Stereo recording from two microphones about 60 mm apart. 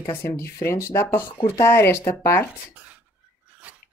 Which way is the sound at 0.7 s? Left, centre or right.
Left.